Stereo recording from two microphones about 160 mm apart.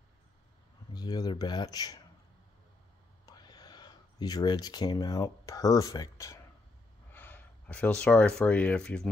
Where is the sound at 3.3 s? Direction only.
25° left (ahead or behind); by 9.0 s 5° left (ahead or behind).